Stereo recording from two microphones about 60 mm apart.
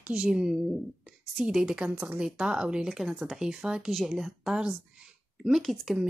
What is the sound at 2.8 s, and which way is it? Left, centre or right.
Speech, centre.